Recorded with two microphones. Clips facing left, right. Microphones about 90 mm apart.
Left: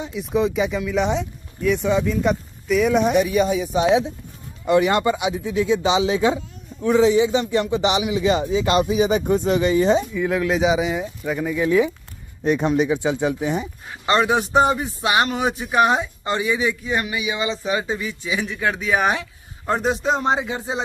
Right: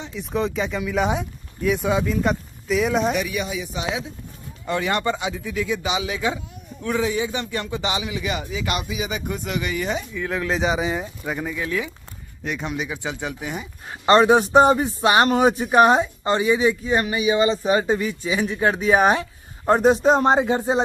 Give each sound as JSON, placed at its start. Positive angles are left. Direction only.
{"t": 0.0, "sound": "speech", "side_deg": 5}
{"t": 3.2, "sound": "speech", "side_deg": 35}
{"t": 4.6, "sound": "speech", "side_deg": 20}
{"t": 10.1, "sound": "speech", "side_deg": 5}
{"t": 11.5, "sound": "speech", "side_deg": 20}
{"t": 12.4, "sound": "speech", "side_deg": 35}
{"t": 12.9, "sound": "speech", "side_deg": 20}
{"t": 14.0, "sound": "speech", "side_deg": -35}